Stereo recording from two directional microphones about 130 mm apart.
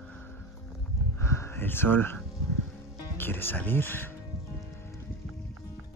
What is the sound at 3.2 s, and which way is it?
Speech, 15° left (ahead or behind).